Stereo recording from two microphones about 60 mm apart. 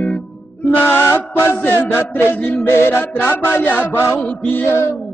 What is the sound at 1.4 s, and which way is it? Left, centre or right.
Mantra, left.